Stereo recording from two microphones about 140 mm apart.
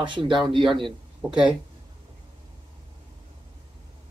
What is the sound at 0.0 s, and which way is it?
Speech, 35° right (ahead or behind).